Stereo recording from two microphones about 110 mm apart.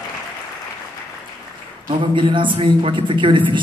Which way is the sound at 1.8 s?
45° right (ahead or behind).